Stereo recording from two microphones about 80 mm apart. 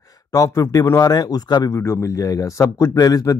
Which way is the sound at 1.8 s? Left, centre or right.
Left.